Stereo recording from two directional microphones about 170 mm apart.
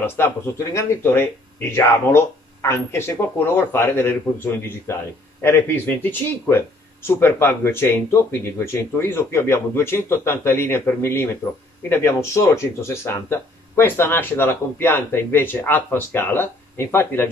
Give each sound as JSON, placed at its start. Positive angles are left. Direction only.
{"t": 0.2, "sound": "speech", "side_deg": 15}